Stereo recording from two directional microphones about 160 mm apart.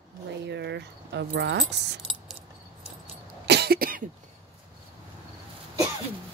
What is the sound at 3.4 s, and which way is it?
Cough, 90° right.